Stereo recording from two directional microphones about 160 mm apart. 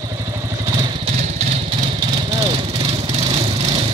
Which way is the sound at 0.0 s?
25° right (ahead or behind).